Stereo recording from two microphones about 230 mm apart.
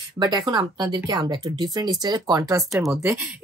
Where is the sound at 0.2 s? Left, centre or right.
Centre.